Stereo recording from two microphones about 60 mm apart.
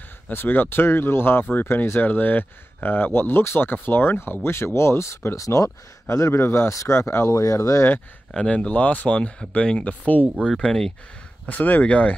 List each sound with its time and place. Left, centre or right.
0.3 s speech: left
8.3 s speech: centre
10.6 s speech: centre
11.4 s speech: left